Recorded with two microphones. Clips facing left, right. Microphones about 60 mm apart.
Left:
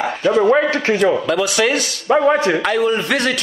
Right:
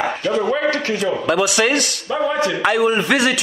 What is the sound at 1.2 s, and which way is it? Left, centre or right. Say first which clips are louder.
A man's voice: even; centre.